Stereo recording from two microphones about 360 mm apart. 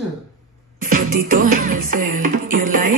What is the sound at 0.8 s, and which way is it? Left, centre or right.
Music, right.